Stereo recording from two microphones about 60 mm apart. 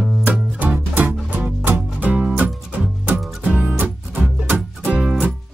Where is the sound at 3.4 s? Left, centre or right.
Right.